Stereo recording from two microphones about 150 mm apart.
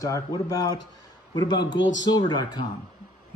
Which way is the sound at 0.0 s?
25° left (ahead or behind).